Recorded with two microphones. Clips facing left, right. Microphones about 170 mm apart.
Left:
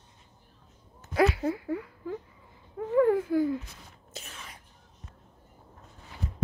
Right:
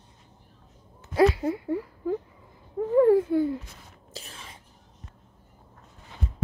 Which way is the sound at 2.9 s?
30° right (ahead or behind).